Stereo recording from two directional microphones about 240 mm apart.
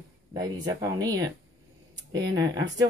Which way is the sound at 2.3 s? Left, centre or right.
Centre.